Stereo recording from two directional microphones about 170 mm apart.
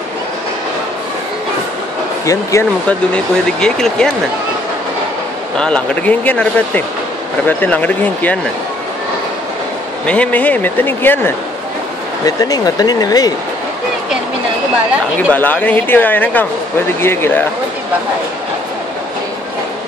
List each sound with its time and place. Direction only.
2.5 s speech: 20° left (ahead or behind)
2.9 s speech: 5° left (ahead or behind)
5.6 s speech: 5° left (ahead or behind)
10.0 s speech: 5° left (ahead or behind); by 13.3 s 20° left (ahead or behind)
15.3 s speech: 10° left (ahead or behind)